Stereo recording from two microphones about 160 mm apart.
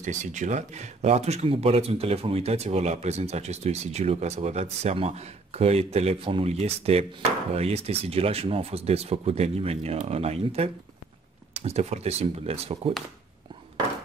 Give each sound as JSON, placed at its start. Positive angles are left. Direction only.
{"t": 0.0, "sound": "speech", "side_deg": -50}